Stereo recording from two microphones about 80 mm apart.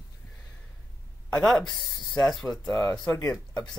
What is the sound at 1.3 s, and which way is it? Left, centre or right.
Speech, centre.